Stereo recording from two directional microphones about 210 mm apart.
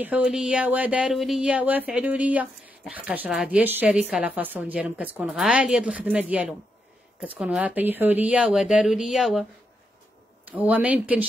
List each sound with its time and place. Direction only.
0.0 s speech: 5° right (ahead or behind)
10.5 s speech: 5° right (ahead or behind)